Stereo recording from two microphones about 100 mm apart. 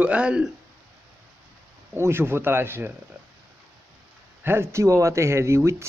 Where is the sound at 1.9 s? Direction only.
25° right (ahead or behind).